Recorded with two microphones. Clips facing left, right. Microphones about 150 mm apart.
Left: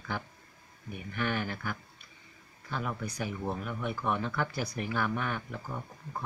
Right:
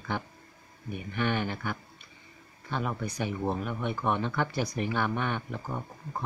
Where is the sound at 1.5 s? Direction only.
20° right (ahead or behind).